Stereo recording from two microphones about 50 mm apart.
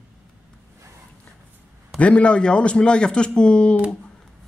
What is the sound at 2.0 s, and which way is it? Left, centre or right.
Speech, left.